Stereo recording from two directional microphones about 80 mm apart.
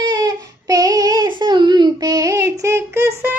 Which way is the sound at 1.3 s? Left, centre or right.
Right.